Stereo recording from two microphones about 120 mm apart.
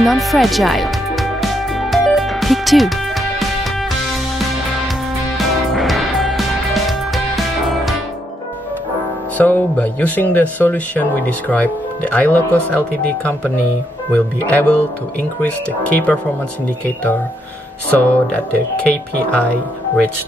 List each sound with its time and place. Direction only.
0.0 s music: centre (ahead or behind)
5.4 s music: centre (ahead or behind)
9.4 s speech: 15° left (ahead or behind)